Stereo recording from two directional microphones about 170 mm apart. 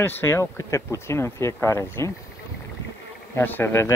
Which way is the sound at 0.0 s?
15° left (ahead or behind).